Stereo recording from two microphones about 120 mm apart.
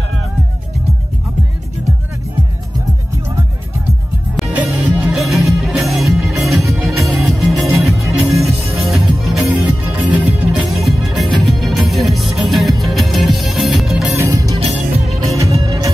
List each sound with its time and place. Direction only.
4.5 s music: 15° right (ahead or behind)
5.1 s music: centre (ahead or behind)
14.1 s music: 25° right (ahead or behind)
14.6 s music: 60° right (ahead or behind)
15.3 s music: 25° right (ahead or behind)